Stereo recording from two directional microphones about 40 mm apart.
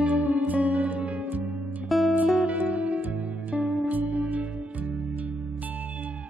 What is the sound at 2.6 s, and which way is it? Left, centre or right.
Music, right.